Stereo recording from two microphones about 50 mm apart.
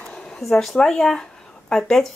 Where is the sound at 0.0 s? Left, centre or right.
Centre.